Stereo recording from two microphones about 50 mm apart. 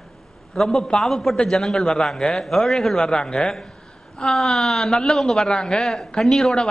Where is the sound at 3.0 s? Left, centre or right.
Centre.